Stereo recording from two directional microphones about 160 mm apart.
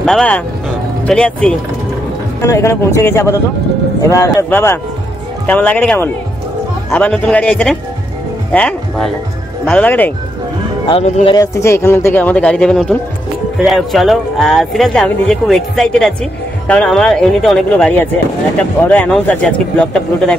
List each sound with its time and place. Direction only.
0.0 s speech: 5° left (ahead or behind)
2.4 s speech: 15° left (ahead or behind)
10.9 s speech: 40° left (ahead or behind)
11.3 s speech: 15° left (ahead or behind)